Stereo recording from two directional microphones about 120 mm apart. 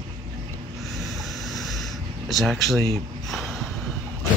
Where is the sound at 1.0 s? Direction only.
Centre (ahead or behind).